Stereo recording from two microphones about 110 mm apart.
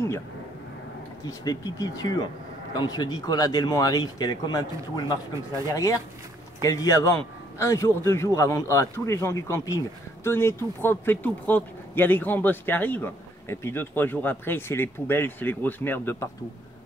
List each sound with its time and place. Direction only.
1.4 s speech: 35° left (ahead or behind)
6.6 s speech: 30° left (ahead or behind)